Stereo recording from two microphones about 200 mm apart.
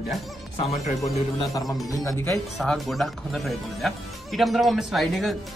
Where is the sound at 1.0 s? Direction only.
15° left (ahead or behind).